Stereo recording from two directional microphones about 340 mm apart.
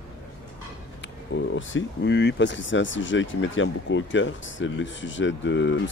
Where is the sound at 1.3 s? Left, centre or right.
Left.